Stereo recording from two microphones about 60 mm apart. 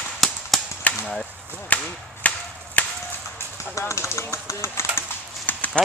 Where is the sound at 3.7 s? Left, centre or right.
Left.